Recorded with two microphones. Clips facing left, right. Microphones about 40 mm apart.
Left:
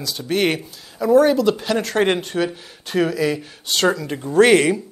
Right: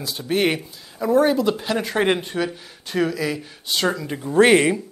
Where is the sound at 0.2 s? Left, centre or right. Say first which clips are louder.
Left 1 dB; centre.